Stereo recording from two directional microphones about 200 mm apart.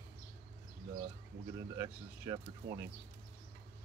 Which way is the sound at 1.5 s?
15° right (ahead or behind).